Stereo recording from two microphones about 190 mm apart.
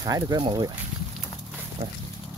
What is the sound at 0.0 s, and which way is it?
Speech, 20° right (ahead or behind).